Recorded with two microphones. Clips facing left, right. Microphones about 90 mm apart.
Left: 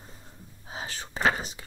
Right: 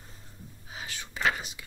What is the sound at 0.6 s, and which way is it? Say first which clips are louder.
Whispering: left 4 dB; 35° left (ahead or behind).